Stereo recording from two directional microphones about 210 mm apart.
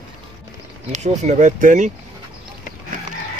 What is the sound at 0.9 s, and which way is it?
Speech, 35° right (ahead or behind).